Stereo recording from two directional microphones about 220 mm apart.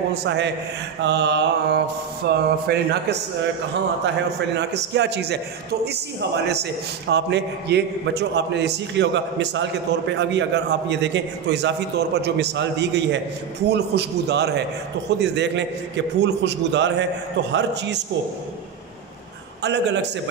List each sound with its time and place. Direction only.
0.1 s a man's voice: 50° right (ahead or behind)
4.6 s a man's voice: 50° right (ahead or behind)
19.6 s a man's voice: 50° right (ahead or behind)